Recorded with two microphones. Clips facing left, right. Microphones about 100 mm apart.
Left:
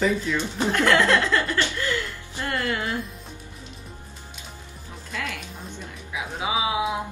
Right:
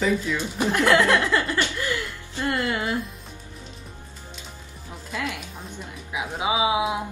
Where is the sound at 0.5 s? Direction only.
15° right (ahead or behind).